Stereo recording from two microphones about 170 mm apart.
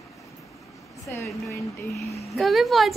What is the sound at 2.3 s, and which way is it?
Speech, centre (ahead or behind).